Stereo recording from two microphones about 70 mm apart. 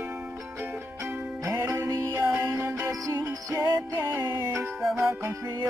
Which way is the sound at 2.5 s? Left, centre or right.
Right.